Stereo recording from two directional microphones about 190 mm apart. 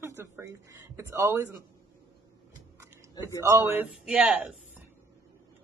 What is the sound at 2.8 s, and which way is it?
Speech, 15° right (ahead or behind).